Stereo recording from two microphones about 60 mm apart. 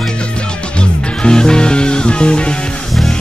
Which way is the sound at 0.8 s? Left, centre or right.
Centre.